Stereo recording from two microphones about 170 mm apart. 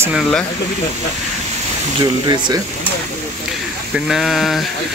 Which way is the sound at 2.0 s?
25° right (ahead or behind).